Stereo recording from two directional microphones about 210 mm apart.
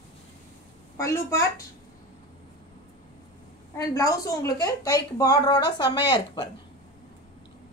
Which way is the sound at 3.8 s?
15° left (ahead or behind).